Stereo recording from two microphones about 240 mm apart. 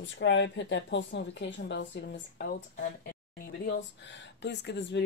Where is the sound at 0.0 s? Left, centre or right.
Left.